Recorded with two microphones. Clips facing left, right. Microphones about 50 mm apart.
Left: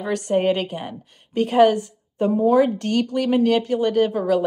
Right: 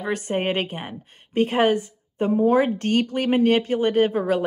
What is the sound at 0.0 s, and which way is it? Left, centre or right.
Speech, right.